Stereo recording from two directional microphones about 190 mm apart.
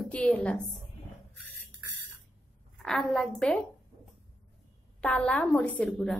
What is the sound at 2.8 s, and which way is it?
Speech, centre (ahead or behind).